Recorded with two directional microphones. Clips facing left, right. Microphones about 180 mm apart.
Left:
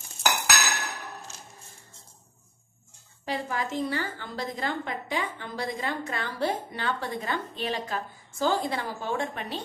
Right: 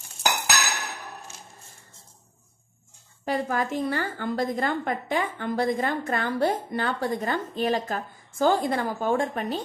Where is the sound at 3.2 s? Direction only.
50° right (ahead or behind).